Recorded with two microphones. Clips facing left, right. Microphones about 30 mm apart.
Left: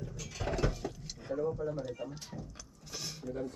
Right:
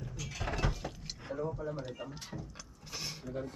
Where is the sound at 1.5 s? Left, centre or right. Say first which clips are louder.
Left 3 dB; right.